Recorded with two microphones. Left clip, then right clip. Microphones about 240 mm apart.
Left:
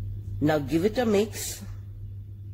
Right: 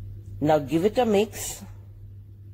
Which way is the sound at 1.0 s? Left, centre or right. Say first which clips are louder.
Right 3 dB; centre.